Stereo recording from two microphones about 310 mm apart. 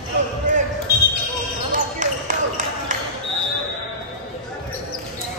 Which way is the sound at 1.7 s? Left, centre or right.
Right.